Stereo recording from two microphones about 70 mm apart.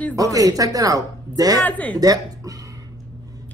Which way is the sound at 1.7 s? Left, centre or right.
Left.